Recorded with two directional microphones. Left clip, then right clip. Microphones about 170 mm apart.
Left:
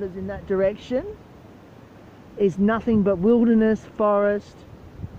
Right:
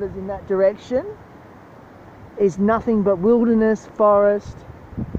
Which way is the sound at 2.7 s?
20° left (ahead or behind).